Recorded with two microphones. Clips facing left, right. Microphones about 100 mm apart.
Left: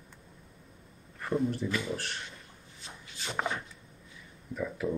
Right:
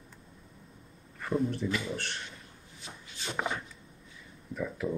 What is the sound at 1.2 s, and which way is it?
Speech, centre (ahead or behind).